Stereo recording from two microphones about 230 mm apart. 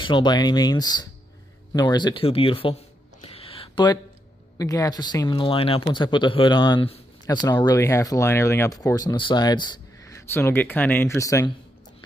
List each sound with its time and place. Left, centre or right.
0.0 s speech: centre
3.3 s a sound: left
4.6 s speech: centre